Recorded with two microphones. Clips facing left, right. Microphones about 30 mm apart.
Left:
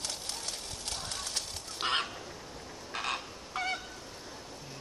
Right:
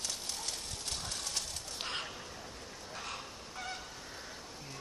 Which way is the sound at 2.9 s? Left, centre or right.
Left.